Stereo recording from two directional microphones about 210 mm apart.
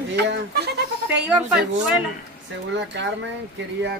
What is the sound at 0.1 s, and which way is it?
Goat, 55° right (ahead or behind).